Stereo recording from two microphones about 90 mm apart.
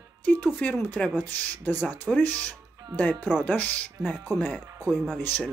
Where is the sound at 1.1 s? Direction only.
20° left (ahead or behind).